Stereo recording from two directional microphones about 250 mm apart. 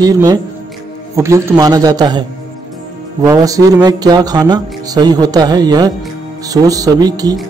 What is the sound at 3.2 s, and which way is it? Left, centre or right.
Speech, centre.